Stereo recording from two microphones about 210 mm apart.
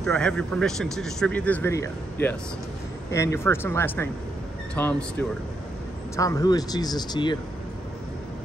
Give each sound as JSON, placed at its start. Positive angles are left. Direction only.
{"t": 0.0, "sound": "speech", "side_deg": 5}
{"t": 6.1, "sound": "speech", "side_deg": 15}